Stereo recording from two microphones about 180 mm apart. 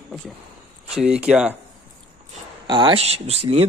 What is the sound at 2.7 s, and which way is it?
Speech, 25° right (ahead or behind).